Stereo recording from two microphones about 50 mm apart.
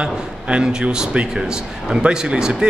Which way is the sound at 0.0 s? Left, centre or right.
Centre.